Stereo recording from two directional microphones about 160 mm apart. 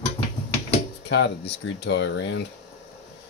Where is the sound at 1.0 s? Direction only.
90° left.